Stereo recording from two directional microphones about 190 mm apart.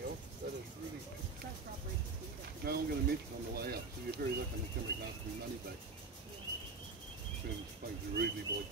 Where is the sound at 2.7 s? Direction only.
55° right (ahead or behind).